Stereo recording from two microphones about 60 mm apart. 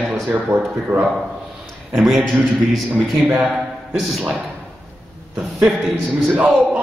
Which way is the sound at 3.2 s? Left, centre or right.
Right.